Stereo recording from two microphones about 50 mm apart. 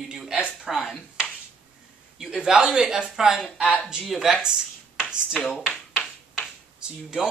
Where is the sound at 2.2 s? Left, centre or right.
Centre.